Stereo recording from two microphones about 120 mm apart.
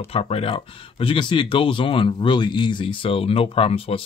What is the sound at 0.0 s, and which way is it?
Speech, 55° left (ahead or behind).